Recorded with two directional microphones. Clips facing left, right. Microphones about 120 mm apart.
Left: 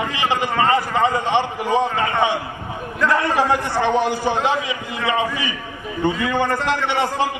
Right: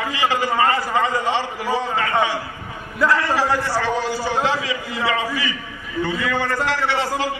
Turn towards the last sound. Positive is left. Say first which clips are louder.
# left 1 dB
turn(degrees=20)  # may be behind; listen again after turning